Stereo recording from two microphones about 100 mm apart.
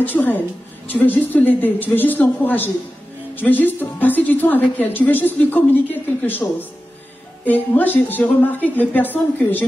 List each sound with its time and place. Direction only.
0.0 s a woman's voice: 20° left (ahead or behind)